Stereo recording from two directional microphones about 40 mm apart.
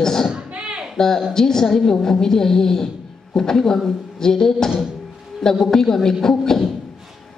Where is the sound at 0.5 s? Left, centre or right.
Right.